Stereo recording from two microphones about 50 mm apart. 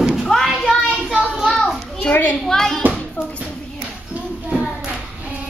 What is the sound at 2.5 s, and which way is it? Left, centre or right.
Speech, centre.